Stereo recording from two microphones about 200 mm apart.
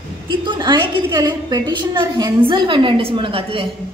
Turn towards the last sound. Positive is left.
turn(degrees=-25)  # may be behind; listen again after turning